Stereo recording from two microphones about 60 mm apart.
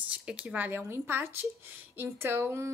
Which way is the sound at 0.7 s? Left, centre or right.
Right.